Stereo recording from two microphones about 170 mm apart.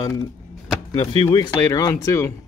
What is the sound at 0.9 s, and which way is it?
Speech, 35° left (ahead or behind).